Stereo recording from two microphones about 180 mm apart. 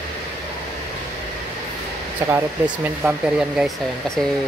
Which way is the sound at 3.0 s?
5° right (ahead or behind).